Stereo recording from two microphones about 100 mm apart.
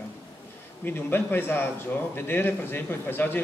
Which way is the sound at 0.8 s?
20° left (ahead or behind).